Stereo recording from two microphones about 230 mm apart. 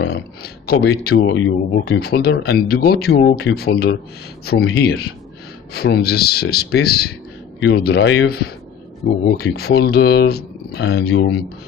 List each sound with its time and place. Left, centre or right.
0.0 s speech: left